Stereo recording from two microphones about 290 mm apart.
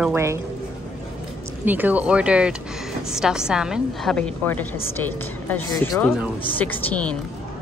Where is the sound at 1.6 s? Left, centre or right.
Centre.